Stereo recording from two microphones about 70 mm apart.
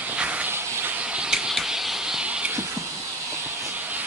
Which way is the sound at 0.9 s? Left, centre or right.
Centre.